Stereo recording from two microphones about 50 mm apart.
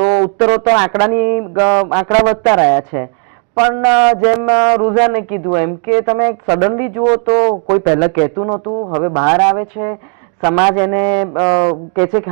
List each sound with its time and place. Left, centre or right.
0.0 s speech: centre
6.7 s speech: centre
7.7 s speech: centre